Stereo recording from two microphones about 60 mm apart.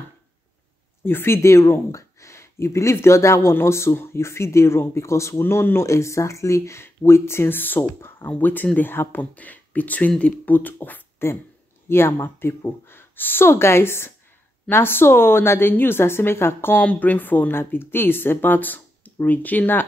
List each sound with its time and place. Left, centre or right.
1.0 s speech: left
5.4 s speech: left
9.2 s speech: left
11.9 s speech: left
16.8 s speech: left